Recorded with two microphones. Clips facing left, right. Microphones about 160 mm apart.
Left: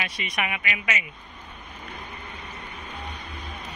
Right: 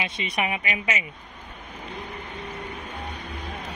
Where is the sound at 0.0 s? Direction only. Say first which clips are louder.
Right 3 dB; 25° right (ahead or behind).